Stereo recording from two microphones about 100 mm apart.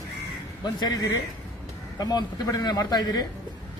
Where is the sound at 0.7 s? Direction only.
45° left (ahead or behind).